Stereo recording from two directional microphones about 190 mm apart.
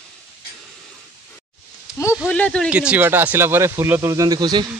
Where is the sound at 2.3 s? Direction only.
5° left (ahead or behind).